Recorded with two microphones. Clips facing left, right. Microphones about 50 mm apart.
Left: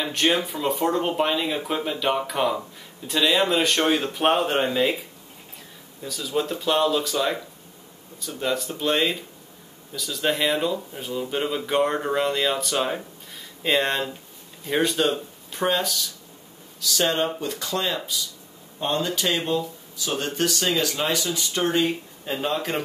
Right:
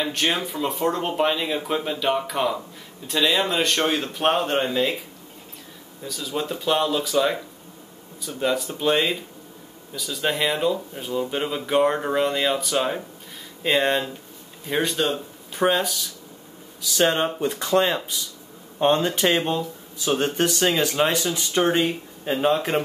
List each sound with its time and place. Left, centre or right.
0.0 s speech: centre
6.0 s speech: centre
8.4 s speech: centre
15.6 s speech: centre